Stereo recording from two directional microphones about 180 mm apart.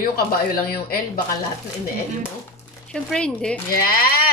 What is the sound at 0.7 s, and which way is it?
Speech, 55° left (ahead or behind).